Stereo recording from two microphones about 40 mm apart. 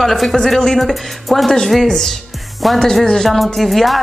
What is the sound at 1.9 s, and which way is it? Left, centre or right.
A woman's voice, centre.